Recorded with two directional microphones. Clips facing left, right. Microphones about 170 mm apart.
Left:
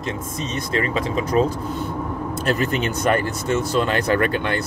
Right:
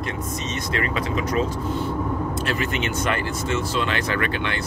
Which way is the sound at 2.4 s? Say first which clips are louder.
Left 8 dB; 40° left (ahead or behind).